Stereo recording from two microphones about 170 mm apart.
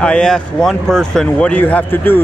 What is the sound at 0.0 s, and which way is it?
Speech, 5° left (ahead or behind).